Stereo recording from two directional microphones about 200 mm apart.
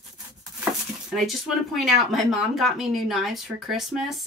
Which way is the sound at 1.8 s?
Centre (ahead or behind).